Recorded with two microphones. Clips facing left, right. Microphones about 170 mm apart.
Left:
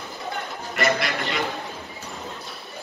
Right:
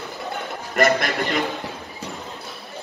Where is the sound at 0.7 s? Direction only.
45° right (ahead or behind).